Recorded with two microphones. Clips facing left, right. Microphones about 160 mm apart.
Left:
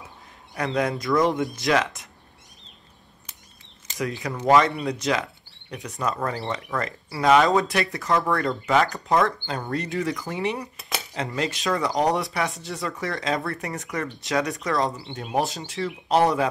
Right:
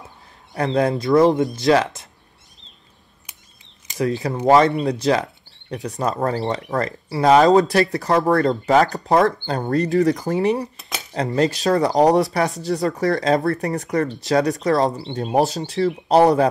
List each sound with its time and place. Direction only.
0.6 s speech: 30° right (ahead or behind)
4.2 s speech: 35° right (ahead or behind)